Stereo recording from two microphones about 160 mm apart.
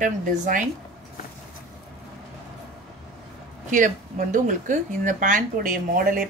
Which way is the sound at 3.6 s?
55° right (ahead or behind).